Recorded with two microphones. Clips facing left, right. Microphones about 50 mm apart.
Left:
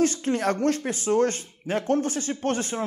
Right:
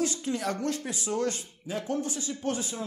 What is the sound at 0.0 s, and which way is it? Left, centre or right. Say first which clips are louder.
Speech: left 7 dB; left.